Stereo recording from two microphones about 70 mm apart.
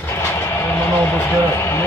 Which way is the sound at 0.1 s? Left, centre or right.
Left.